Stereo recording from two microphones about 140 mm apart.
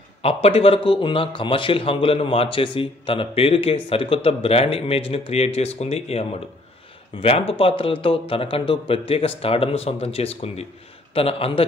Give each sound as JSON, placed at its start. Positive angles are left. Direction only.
{"t": 0.2, "sound": "speech", "side_deg": 45}